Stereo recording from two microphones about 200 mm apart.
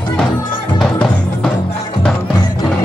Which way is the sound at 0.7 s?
5° left (ahead or behind).